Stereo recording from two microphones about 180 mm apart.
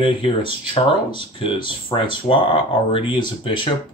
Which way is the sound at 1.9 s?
25° left (ahead or behind).